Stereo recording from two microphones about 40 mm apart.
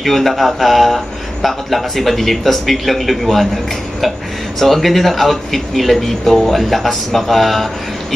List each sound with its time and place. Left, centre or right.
0.0 s speech: centre
4.6 s speech: centre